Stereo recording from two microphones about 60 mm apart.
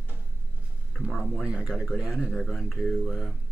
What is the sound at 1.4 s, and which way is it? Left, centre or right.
Speech, centre.